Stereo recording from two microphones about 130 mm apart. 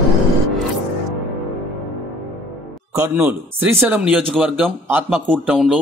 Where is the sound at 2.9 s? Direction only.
20° right (ahead or behind).